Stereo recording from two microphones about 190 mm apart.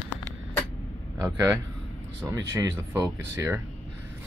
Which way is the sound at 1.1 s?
15° right (ahead or behind).